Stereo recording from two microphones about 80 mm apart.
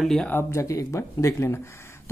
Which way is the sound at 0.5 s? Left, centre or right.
Left.